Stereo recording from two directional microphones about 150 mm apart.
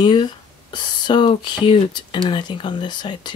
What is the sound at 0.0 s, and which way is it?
Speech, 30° left (ahead or behind).